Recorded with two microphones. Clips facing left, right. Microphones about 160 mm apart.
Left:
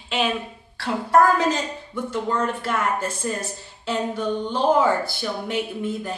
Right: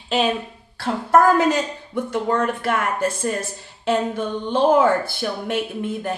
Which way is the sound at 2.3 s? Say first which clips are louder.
Right 4 dB; 60° right (ahead or behind).